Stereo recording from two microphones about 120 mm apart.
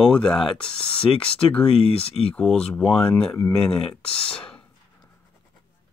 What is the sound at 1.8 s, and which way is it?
Speech, 55° left (ahead or behind).